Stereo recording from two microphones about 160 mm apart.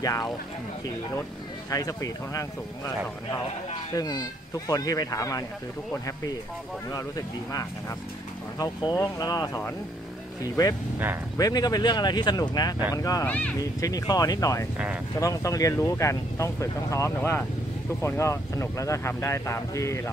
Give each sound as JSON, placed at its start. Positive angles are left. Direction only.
{"t": 1.7, "sound": "speech", "side_deg": 20}
{"t": 3.9, "sound": "speech", "side_deg": 25}
{"t": 6.9, "sound": "speech", "side_deg": 20}
{"t": 13.3, "sound": "speech", "side_deg": 10}
{"t": 13.6, "sound": "speech", "side_deg": 20}